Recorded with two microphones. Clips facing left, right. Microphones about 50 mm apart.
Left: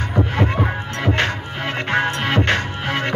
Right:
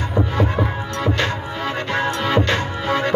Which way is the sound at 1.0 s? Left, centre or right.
Left.